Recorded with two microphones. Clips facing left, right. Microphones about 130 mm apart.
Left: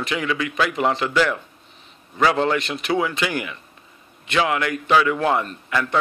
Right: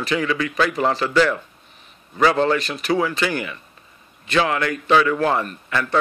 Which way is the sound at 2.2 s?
15° left (ahead or behind).